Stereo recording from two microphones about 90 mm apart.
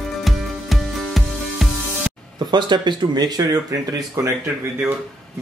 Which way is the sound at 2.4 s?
55° right (ahead or behind).